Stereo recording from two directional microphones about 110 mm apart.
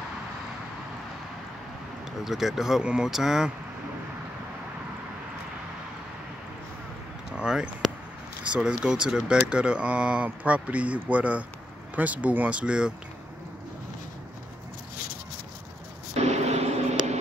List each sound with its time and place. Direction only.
2.2 s speech: 5° right (ahead or behind)
7.3 s speech: 5° right (ahead or behind)
16.2 s vehicle: 90° right